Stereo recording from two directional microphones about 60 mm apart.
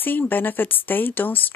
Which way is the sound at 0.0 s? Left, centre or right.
Left.